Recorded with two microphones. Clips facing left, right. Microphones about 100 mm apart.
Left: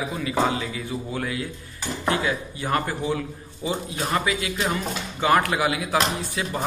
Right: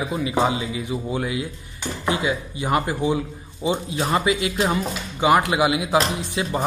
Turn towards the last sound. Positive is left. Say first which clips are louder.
# right 3 dB
turn(degrees=-20)  # may be behind; listen again after turning